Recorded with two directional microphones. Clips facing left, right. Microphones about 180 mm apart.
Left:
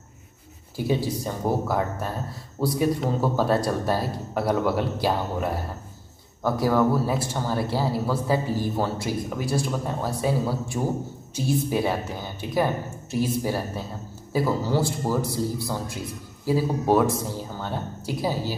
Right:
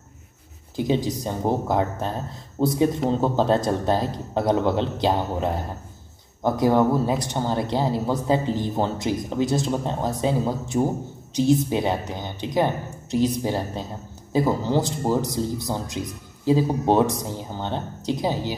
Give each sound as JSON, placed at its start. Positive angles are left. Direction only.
{"t": 0.7, "sound": "speech", "side_deg": -20}